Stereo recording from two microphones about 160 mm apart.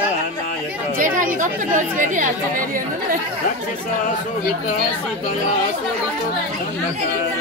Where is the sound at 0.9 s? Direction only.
55° right (ahead or behind).